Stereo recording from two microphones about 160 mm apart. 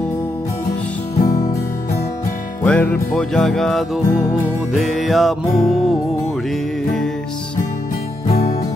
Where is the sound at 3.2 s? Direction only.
5° left (ahead or behind).